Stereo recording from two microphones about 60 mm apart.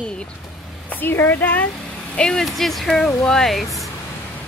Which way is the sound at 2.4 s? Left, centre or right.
Centre.